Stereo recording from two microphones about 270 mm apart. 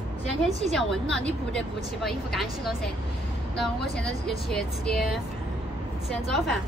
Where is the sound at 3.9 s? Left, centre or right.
Centre.